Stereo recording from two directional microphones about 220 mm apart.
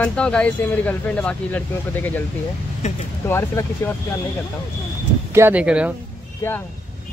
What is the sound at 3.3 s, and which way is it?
Speech, 10° left (ahead or behind).